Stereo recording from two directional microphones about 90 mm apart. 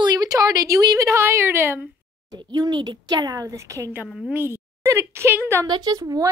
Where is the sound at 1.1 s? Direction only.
25° right (ahead or behind).